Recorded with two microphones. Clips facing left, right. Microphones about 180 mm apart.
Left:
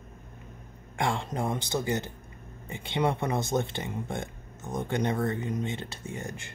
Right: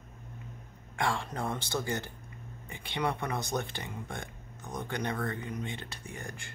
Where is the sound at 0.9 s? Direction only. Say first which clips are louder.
Left 3 dB; 20° left (ahead or behind).